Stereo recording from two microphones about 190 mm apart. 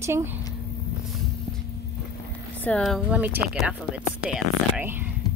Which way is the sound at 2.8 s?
Centre (ahead or behind).